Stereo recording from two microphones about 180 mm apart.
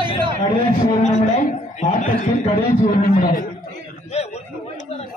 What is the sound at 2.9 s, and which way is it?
Speech, 50° left (ahead or behind).